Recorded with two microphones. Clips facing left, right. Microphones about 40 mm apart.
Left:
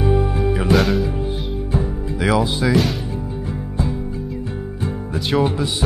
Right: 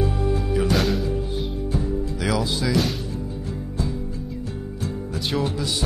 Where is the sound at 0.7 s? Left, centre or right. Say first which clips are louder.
Left 5 dB; centre.